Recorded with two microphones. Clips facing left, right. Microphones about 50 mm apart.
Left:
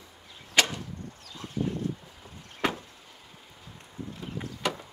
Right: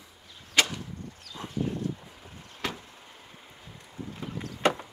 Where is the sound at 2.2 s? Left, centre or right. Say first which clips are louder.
Left 2 dB; left.